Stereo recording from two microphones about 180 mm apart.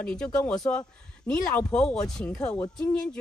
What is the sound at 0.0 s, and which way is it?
Speech, 5° left (ahead or behind).